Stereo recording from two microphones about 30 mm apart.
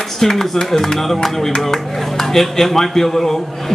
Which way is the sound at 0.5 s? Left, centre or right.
Centre.